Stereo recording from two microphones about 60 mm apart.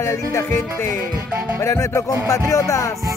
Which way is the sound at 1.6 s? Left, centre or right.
Left.